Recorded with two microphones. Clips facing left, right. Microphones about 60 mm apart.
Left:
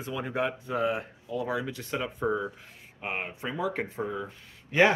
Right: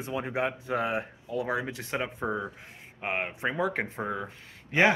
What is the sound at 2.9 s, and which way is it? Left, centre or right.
Speech, right.